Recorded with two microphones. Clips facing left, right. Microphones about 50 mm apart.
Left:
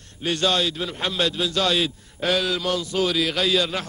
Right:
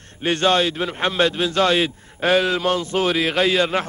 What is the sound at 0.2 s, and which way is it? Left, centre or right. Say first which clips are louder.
A man's voice: right 4 dB; right.